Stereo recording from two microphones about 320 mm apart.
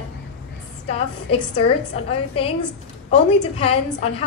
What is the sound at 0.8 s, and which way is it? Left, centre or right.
A woman's voice, centre.